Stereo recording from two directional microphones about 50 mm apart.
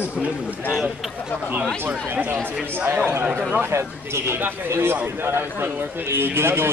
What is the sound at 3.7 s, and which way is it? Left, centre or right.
A man's voice, right.